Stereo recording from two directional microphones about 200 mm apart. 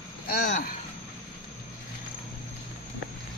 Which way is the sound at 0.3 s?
50° left (ahead or behind).